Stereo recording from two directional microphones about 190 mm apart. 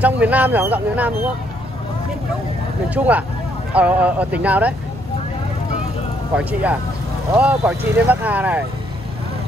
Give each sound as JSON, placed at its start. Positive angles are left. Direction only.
{"t": 0.0, "sound": "speech", "side_deg": -10}
{"t": 2.9, "sound": "speech", "side_deg": -10}
{"t": 6.3, "sound": "speech", "side_deg": -10}